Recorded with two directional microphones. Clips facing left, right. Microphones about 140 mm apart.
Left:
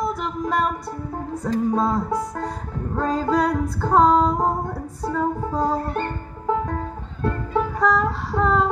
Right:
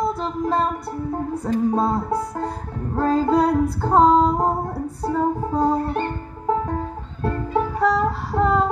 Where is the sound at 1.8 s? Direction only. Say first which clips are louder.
Right 1 dB; 30° right (ahead or behind).